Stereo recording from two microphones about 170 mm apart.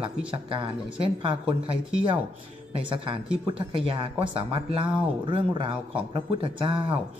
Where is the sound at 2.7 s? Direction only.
30° right (ahead or behind).